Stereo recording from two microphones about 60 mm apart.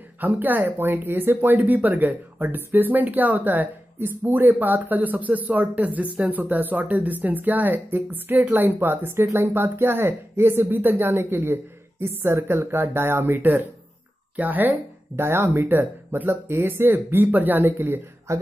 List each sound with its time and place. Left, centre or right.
0.2 s speech: right
15.2 s speech: right
18.3 s speech: right